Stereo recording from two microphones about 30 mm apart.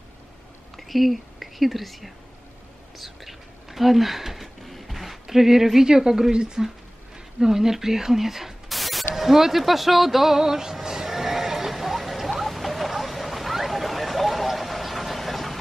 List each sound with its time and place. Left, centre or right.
0.7 s speech: centre
3.0 s whispering: centre
4.6 s a sound: centre
5.9 s a woman's voice: right
7.3 s speech: centre
8.6 s a sound: centre